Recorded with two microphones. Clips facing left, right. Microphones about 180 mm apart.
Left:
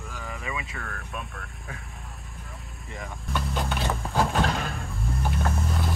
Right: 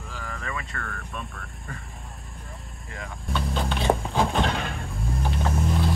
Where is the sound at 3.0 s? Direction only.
5° left (ahead or behind).